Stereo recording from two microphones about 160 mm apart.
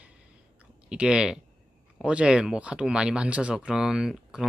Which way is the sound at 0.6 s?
5° right (ahead or behind).